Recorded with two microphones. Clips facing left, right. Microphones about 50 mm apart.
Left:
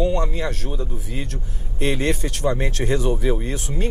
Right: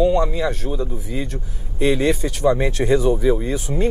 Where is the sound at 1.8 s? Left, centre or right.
Left.